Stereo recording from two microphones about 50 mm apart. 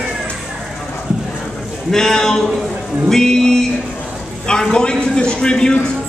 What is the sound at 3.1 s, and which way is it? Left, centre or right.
Music, centre.